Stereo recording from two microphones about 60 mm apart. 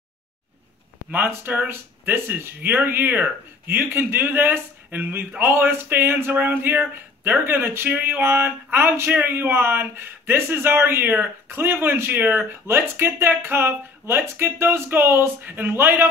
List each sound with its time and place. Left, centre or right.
1.3 s speech: right